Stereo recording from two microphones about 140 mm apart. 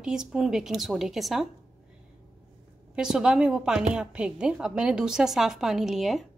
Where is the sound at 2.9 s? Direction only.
5° right (ahead or behind).